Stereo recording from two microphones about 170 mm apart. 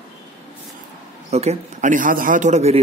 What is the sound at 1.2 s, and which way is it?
Speech, 40° right (ahead or behind).